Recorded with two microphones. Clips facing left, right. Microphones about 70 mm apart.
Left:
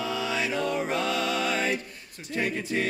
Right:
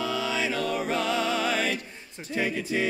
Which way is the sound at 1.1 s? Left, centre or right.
Right.